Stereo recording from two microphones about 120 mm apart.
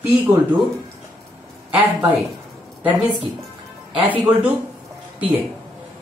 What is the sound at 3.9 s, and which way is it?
Speech, 10° right (ahead or behind).